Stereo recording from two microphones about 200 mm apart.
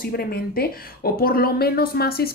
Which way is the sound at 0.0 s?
50° left (ahead or behind).